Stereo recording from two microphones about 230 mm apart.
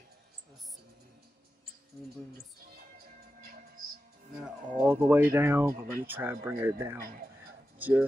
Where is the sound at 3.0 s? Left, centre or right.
Right.